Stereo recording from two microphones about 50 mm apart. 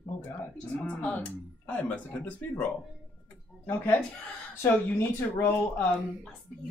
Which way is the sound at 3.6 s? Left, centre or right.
Left.